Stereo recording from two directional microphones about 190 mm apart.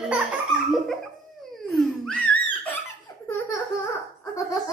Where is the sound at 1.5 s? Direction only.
Centre (ahead or behind).